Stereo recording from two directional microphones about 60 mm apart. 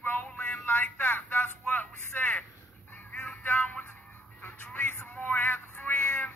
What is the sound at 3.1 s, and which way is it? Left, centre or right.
Music, left.